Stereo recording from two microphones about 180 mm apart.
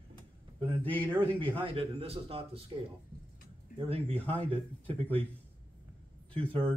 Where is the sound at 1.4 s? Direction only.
30° right (ahead or behind).